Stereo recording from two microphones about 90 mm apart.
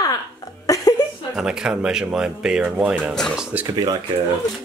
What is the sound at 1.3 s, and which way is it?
Speech, 10° right (ahead or behind).